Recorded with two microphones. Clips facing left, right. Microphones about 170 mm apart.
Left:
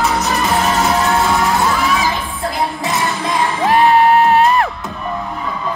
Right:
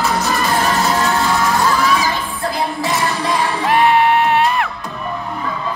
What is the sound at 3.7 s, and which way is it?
Music, 40° left (ahead or behind).